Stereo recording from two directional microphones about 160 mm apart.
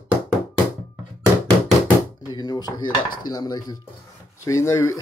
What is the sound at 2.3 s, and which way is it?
Dishes, 25° left (ahead or behind).